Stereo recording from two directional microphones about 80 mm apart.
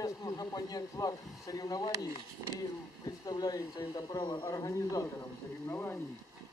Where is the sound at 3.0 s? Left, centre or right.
Left.